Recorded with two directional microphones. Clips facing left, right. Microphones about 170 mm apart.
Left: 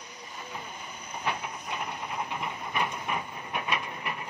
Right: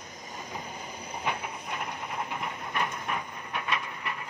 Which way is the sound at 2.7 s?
15° left (ahead or behind).